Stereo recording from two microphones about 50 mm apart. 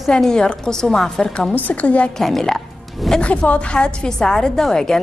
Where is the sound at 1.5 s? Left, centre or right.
Left.